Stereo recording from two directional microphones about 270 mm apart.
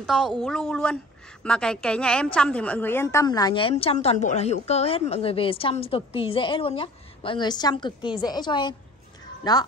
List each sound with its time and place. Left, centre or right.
0.0 s a woman's voice: centre